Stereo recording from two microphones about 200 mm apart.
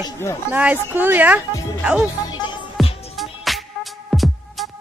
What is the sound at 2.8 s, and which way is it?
Music, centre (ahead or behind).